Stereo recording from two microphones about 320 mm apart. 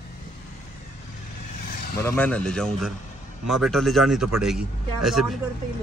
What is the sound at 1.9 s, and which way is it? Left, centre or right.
Speech, centre.